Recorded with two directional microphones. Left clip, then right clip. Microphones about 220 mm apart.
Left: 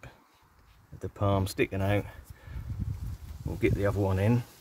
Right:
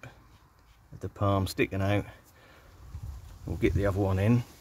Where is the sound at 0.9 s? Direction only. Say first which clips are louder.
Even; centre (ahead or behind).